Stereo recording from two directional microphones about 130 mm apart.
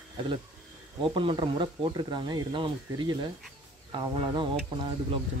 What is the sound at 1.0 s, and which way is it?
Speech, 40° right (ahead or behind).